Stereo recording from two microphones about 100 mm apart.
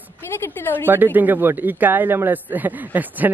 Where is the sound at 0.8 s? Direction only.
20° right (ahead or behind).